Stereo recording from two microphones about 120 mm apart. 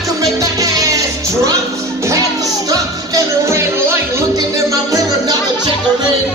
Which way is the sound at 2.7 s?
25° right (ahead or behind).